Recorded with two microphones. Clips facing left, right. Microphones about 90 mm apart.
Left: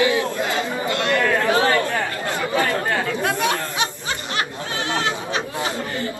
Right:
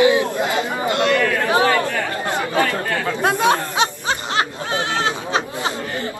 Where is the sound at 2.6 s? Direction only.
25° left (ahead or behind).